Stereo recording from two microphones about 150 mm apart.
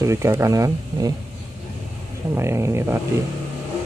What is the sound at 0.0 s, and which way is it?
Speech, 20° right (ahead or behind).